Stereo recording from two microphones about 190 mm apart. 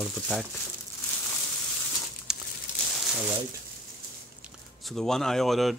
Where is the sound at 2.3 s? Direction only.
5° right (ahead or behind).